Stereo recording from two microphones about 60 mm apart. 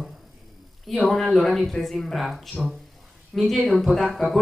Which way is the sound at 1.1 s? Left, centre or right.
Centre.